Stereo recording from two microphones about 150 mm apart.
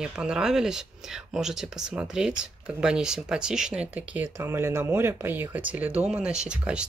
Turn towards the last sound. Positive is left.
turn(degrees=-5)  # may be behind; listen again after turning